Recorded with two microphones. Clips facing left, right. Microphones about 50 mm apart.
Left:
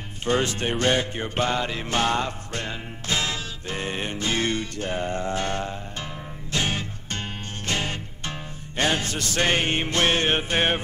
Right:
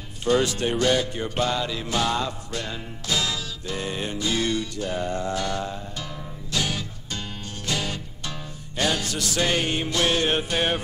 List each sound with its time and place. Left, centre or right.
0.2 s music: left